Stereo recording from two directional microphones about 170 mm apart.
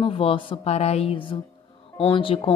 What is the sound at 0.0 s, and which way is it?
Music, 30° left (ahead or behind).